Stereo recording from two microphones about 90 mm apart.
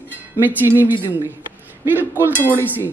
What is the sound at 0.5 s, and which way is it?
Speech, 20° right (ahead or behind).